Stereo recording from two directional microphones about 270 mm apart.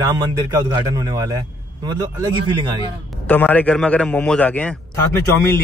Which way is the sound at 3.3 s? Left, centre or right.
Centre.